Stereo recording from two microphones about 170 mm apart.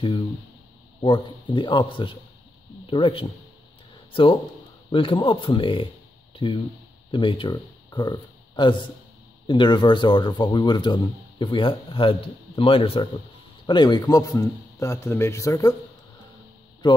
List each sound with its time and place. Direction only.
1.0 s speech: 30° left (ahead or behind)
16.8 s speech: 25° left (ahead or behind)